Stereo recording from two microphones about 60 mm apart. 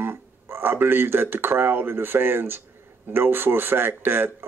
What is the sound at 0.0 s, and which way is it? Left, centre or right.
Speech, right.